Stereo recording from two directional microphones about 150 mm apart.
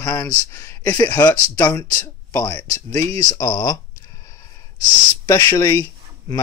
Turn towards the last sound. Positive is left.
turn(degrees=20)  # may be behind; listen again after turning